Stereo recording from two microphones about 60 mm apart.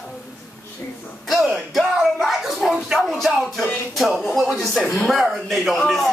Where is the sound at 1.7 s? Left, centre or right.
Centre.